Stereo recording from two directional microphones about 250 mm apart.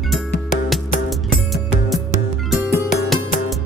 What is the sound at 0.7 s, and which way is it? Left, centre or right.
Music, centre.